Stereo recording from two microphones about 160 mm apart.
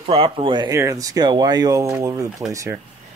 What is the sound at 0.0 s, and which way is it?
Speech, 35° right (ahead or behind).